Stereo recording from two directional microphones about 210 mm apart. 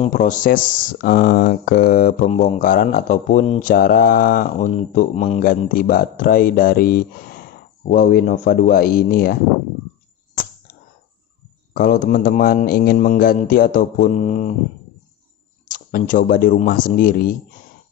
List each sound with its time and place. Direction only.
0.0 s speech: 40° left (ahead or behind)
11.7 s a man's voice: 45° left (ahead or behind)
15.7 s speech: 40° left (ahead or behind)